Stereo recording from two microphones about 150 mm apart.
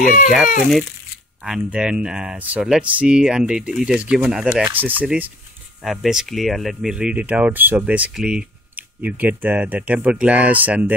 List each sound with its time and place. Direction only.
0.0 s speech: 60° left (ahead or behind)
1.4 s speech: 5° right (ahead or behind)